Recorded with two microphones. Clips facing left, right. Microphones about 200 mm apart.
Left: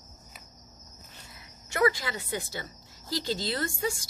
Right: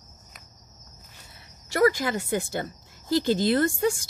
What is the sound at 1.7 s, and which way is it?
A woman's voice, 45° right (ahead or behind).